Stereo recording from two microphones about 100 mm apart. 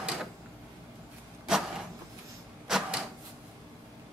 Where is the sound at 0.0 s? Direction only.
5° right (ahead or behind).